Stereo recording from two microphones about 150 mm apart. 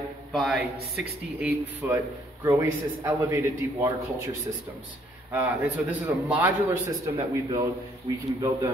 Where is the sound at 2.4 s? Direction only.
20° right (ahead or behind).